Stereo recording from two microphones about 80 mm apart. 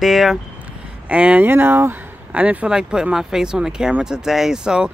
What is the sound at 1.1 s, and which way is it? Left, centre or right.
Speech, centre.